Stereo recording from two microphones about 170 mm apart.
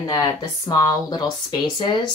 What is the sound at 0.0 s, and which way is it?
Speech, 20° left (ahead or behind).